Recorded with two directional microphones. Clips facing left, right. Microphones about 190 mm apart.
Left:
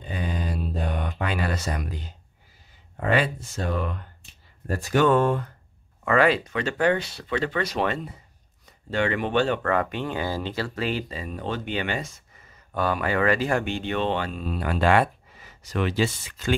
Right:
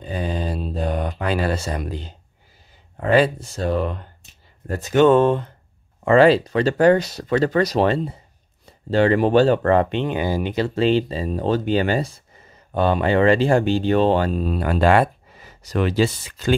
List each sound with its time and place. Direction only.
0.1 s mantra: 30° right (ahead or behind)
3.2 s speech: 35° right (ahead or behind)